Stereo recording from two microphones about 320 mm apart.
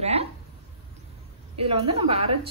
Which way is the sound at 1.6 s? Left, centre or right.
Centre.